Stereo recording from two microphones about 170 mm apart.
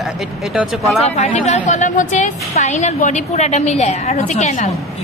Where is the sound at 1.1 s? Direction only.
45° left (ahead or behind).